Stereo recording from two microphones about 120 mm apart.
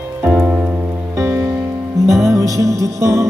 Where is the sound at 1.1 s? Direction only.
20° right (ahead or behind).